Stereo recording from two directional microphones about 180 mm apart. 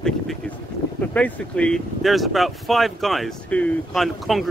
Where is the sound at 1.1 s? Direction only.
5° left (ahead or behind).